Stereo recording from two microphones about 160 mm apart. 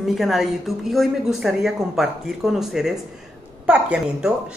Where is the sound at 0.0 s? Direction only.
Centre (ahead or behind).